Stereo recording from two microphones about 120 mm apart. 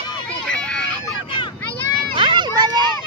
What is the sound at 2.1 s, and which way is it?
Children playing, 40° right (ahead or behind).